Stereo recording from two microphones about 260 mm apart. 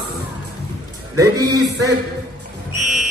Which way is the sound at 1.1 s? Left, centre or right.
Centre.